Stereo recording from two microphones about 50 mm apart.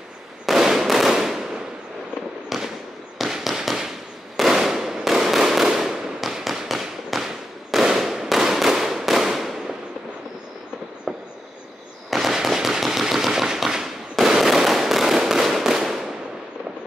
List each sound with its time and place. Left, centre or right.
0.5 s fireworks: centre
11.1 s train: centre
12.1 s fireworks: centre
12.4 s machine gun: centre
14.1 s fireworks: centre